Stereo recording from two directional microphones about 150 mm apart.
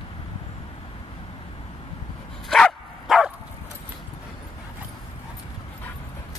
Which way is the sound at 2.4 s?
5° left (ahead or behind).